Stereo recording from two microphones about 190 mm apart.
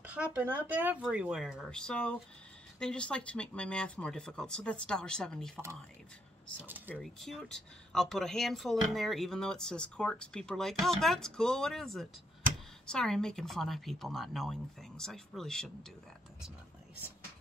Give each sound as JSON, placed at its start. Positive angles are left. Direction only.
{"t": 0.0, "sound": "speech", "side_deg": -5}
{"t": 6.6, "sound": "speech", "side_deg": -10}
{"t": 7.0, "sound": "speech", "side_deg": 0}